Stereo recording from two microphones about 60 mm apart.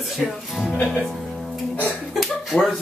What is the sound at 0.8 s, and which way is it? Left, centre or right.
Speech, centre.